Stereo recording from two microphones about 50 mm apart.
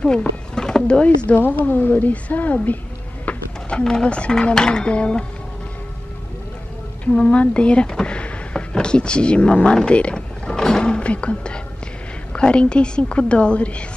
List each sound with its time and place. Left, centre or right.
0.0 s speech: centre
1.4 s a woman's voice: left
3.3 s a sound: left
3.8 s a woman's voice: centre
7.1 s a woman's voice: left